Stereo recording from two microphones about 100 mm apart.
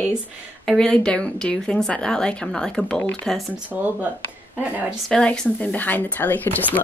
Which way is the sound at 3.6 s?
15° right (ahead or behind).